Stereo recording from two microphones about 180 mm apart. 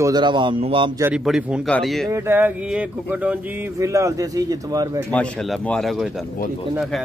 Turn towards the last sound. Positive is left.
turn(degrees=0)  # may be behind; listen again after turning